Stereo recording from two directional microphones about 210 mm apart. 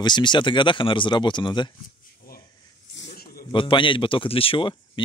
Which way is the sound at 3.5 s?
25° left (ahead or behind).